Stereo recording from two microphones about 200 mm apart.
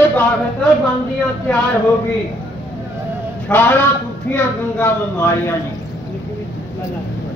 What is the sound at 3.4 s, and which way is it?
A man's voice, 10° left (ahead or behind).